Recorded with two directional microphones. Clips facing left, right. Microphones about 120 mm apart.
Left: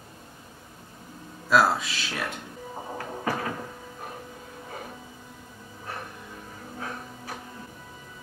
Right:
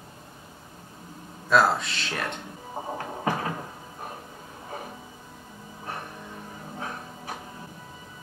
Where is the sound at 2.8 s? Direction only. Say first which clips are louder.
Right 5 dB; 20° right (ahead or behind).